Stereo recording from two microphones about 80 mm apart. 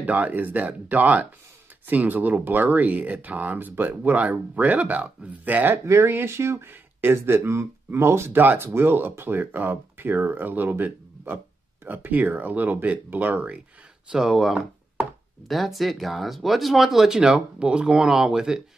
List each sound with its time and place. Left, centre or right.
0.0 s speech: right
5.9 s speech: right
14.1 s speech: centre